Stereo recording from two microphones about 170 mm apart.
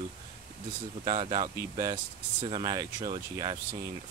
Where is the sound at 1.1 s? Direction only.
30° right (ahead or behind).